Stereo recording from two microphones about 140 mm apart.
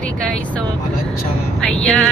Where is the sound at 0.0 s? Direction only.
5° left (ahead or behind).